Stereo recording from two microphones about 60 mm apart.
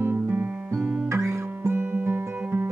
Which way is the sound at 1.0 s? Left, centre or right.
Right.